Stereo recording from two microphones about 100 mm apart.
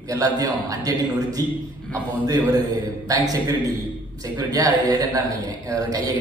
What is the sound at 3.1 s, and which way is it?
A man's voice, 35° right (ahead or behind).